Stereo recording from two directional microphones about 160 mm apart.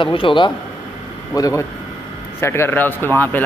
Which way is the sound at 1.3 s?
20° left (ahead or behind).